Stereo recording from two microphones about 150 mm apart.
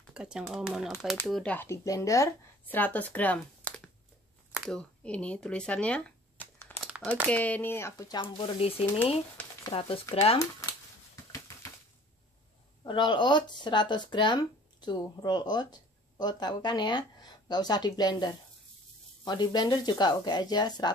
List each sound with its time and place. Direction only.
0.1 s speech: 5° right (ahead or behind)
4.5 s a sound: centre (ahead or behind)
7.2 s speech: 10° left (ahead or behind)
8.2 s speech: 35° left (ahead or behind)
11.3 s a sound: 20° left (ahead or behind)
12.8 s speech: 30° left (ahead or behind)